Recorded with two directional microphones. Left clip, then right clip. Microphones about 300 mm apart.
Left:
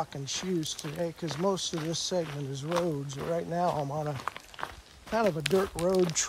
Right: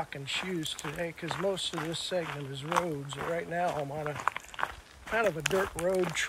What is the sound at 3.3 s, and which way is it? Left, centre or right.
Speech, left.